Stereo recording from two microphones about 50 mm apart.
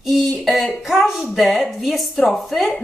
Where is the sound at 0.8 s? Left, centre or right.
Centre.